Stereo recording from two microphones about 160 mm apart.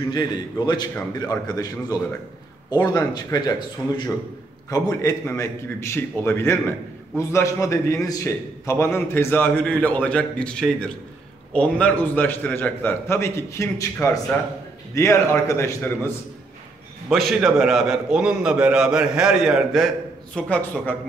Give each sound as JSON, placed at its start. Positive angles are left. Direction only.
{"t": 0.1, "sound": "a man's voice", "side_deg": 25}
{"t": 15.0, "sound": "a man's voice", "side_deg": 20}
{"t": 17.1, "sound": "a man's voice", "side_deg": 0}
{"t": 20.3, "sound": "a man's voice", "side_deg": 10}